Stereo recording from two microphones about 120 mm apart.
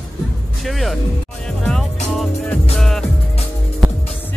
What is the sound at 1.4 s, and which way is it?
Music, 5° left (ahead or behind).